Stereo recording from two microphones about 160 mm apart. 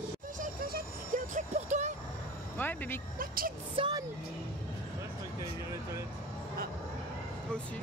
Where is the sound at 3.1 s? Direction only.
65° right (ahead or behind).